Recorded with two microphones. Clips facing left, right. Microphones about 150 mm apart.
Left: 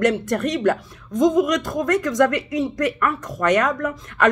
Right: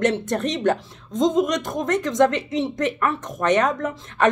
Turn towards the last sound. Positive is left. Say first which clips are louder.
# even
turn(degrees=-25)  # may be behind; listen again after turning